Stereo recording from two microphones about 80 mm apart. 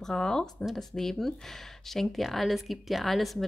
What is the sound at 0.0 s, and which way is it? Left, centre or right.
Speech, centre.